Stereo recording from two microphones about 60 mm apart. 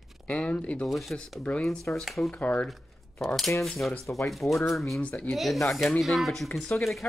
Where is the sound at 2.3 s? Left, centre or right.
Left.